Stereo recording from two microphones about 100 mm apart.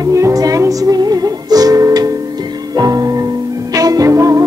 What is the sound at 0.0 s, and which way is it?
Music, 35° right (ahead or behind).